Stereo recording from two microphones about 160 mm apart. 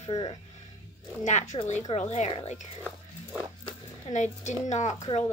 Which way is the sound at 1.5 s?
45° left (ahead or behind).